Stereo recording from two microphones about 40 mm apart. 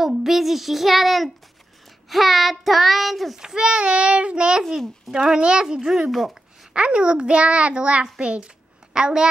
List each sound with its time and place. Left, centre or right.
0.0 s child singing: centre
3.3 s a child's voice: centre
5.4 s a child's voice: right